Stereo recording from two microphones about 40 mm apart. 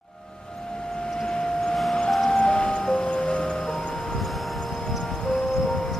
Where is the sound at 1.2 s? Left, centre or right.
Left.